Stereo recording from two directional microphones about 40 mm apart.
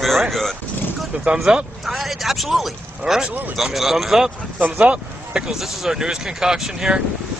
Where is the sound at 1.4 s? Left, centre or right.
Centre.